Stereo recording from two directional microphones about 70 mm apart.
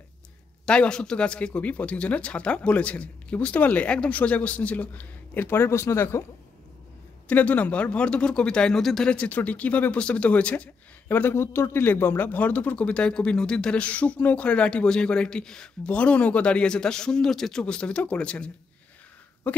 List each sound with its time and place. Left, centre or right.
0.7 s speech: centre; by 6.2 s left
7.2 s speech: left; by 9.1 s centre
9.1 s speech: left
11.1 s speech: left; by 18.5 s centre
19.4 s speech: left